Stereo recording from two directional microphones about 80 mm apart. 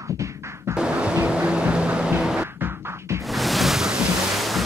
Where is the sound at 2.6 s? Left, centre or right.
Right.